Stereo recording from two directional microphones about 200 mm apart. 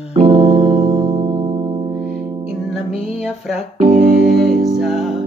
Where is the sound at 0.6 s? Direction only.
20° right (ahead or behind).